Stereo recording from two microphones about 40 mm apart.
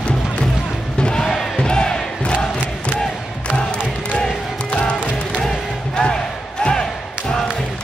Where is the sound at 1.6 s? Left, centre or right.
Left.